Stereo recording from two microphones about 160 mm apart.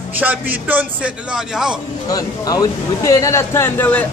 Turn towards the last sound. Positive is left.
turn(degrees=10)  # may be behind; listen again after turning